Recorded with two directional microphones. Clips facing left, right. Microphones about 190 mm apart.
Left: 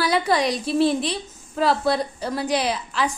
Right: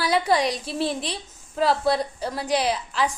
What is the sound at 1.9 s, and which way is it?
Speech, 10° right (ahead or behind).